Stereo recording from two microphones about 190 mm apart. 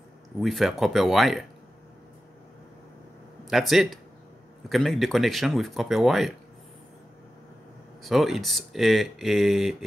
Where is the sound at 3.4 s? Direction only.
Centre (ahead or behind).